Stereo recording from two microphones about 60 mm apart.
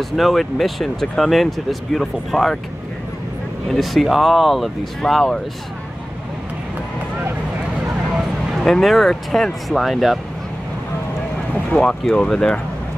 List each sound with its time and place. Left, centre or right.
0.1 s speech: centre
3.7 s speech: centre
8.6 s speech: centre
11.5 s speech: centre